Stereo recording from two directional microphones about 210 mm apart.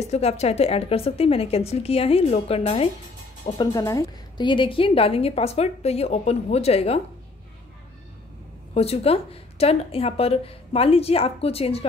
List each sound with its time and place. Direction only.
0.0 s a woman's voice: 30° left (ahead or behind)
3.5 s a woman's voice: 15° left (ahead or behind)
8.7 s a woman's voice: 30° left (ahead or behind)